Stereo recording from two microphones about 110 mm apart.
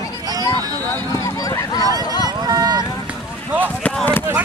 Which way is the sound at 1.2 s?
30° left (ahead or behind).